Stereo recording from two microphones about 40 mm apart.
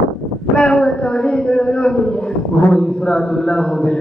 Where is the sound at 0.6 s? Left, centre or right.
Left.